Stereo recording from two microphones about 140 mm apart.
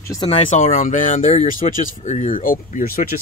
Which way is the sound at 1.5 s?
75° left (ahead or behind).